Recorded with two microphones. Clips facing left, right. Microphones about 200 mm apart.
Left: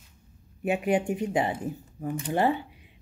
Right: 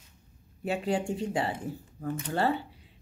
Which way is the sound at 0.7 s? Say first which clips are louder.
Left 4 dB; 20° left (ahead or behind).